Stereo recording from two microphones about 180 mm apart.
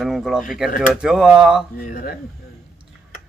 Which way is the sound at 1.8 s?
50° left (ahead or behind).